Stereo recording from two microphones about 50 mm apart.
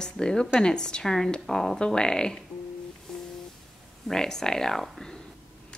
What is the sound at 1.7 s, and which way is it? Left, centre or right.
Speech, centre.